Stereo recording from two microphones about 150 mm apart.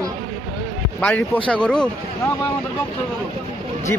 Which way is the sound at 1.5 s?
5° left (ahead or behind).